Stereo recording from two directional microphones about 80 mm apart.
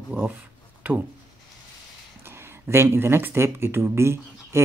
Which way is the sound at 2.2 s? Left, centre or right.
Right.